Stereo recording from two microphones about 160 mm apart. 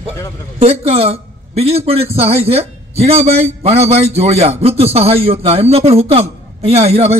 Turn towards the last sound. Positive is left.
turn(degrees=-40)  # may be behind; listen again after turning